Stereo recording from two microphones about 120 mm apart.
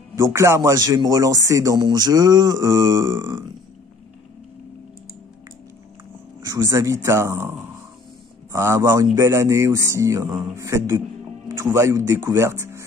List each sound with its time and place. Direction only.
0.1 s speech: 25° right (ahead or behind)
6.4 s speech: 25° right (ahead or behind)